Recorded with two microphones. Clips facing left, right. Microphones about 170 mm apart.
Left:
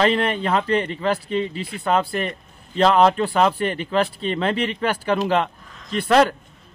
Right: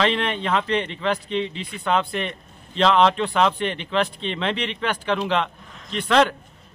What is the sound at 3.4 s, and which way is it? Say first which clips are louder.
Speech: left 1 dB; 5° left (ahead or behind).